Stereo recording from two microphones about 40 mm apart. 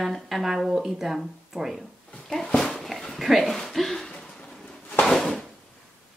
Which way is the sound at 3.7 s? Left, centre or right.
Centre.